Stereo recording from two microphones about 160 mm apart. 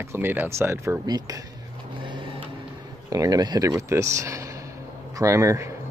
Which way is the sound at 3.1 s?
25° right (ahead or behind).